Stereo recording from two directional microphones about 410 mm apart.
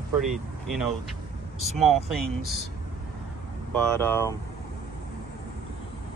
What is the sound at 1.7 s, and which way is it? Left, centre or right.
Speech, centre.